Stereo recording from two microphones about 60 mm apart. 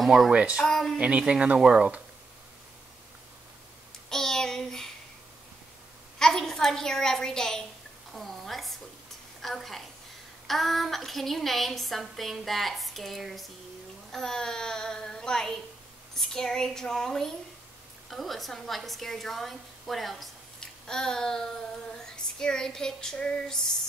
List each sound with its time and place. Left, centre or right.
0.0 s speech: centre
0.3 s speech: right
0.7 s a woman's voice: centre
0.9 s speech: centre
4.1 s child singing: centre
6.1 s a woman's voice: centre
8.1 s a sound: centre
9.4 s a woman's voice: centre
14.1 s a sound: centre
18.1 s a woman's voice: centre
20.6 s a sound: centre